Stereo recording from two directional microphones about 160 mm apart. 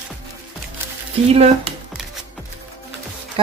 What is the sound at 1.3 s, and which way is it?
Speech, 40° right (ahead or behind).